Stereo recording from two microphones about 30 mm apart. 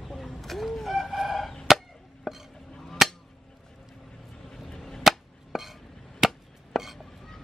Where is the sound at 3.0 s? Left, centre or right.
Centre.